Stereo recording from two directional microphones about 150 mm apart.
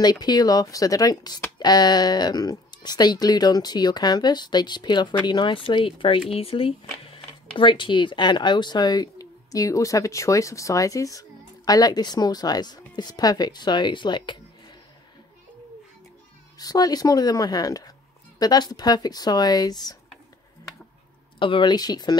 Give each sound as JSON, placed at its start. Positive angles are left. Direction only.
{"t": 0.0, "sound": "speech", "side_deg": 25}
{"t": 16.5, "sound": "speech", "side_deg": 25}
{"t": 21.4, "sound": "speech", "side_deg": 35}